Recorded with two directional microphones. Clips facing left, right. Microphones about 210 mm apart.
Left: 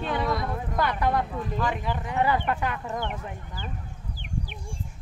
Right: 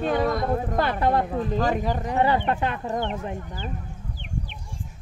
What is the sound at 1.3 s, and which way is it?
Speech, 40° right (ahead or behind).